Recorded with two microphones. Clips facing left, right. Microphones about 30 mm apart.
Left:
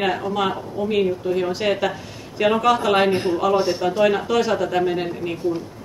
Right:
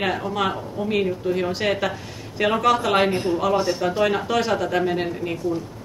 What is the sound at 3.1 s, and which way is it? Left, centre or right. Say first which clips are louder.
Speech: left 2 dB; centre.